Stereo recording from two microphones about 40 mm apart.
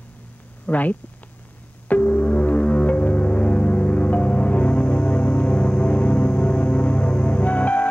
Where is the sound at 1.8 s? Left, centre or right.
Left.